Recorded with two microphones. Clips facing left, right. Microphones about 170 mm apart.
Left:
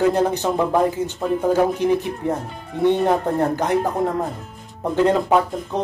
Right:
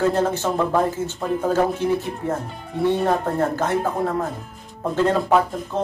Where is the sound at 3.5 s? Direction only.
15° left (ahead or behind).